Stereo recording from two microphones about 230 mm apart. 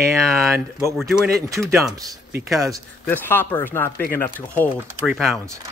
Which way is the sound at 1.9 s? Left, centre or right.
Centre.